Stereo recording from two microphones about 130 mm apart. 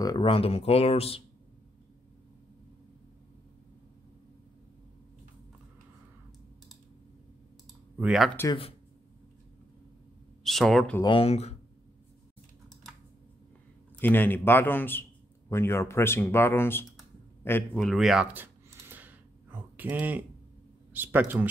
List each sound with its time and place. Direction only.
0.0 s a sound: 30° left (ahead or behind)
0.3 s speech: 50° left (ahead or behind)
8.0 s speech: centre (ahead or behind)
10.4 s speech: centre (ahead or behind)
11.1 s speech: 45° left (ahead or behind)
13.9 s a man's voice: 15° left (ahead or behind)
17.4 s a sound: 15° left (ahead or behind)
17.7 s speech: centre (ahead or behind)
18.3 s a sound: 15° right (ahead or behind)
20.9 s speech: 15° right (ahead or behind)